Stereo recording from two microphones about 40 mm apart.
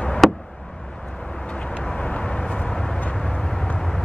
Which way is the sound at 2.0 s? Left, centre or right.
Left.